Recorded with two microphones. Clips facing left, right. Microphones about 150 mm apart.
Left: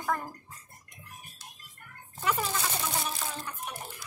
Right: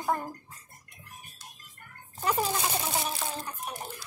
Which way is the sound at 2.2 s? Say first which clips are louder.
Right 2 dB; 35° right (ahead or behind).